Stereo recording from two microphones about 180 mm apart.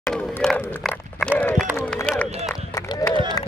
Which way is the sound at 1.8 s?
10° left (ahead or behind).